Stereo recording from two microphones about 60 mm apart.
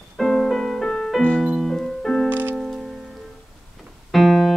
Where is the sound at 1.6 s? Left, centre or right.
Centre.